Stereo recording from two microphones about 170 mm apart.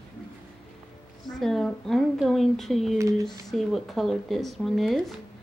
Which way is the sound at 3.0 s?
20° right (ahead or behind).